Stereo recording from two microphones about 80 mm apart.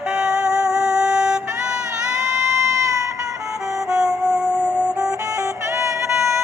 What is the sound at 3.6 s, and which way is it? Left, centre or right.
Music, right.